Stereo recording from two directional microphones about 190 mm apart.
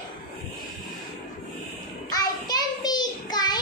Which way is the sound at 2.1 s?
20° left (ahead or behind).